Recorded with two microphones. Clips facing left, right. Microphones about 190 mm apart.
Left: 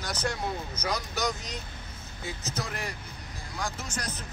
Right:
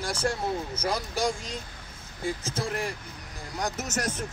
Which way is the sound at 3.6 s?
45° right (ahead or behind).